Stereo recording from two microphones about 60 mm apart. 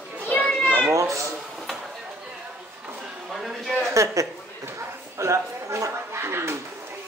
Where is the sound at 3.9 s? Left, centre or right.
Right.